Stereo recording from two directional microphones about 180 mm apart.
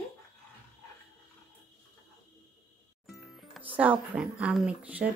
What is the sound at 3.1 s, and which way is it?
Speech, centre (ahead or behind).